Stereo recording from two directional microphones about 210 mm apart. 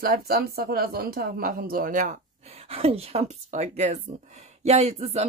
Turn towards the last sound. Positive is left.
turn(degrees=-30)  # may be behind; listen again after turning